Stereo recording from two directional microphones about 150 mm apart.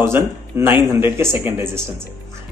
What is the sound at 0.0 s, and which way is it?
Speech, 15° right (ahead or behind).